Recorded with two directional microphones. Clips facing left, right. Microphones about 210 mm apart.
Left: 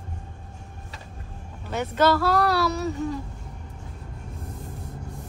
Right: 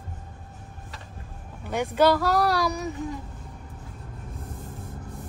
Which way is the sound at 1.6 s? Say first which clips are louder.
Right 1 dB; 10° right (ahead or behind).